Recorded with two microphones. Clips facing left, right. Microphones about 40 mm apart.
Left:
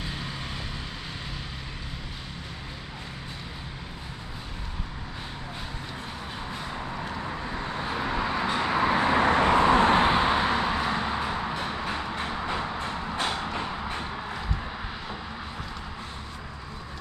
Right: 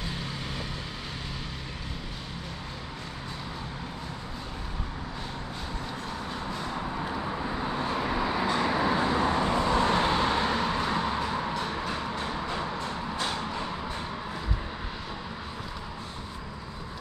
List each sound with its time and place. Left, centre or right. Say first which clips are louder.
0.0 s vehicle: even; centre
6.5 s vehicle: right 1 dB; centre; by 9.2 s left
9.2 s vehicle: left 5 dB; left; by 11.5 s centre
11.6 s a sound: left 1 dB; centre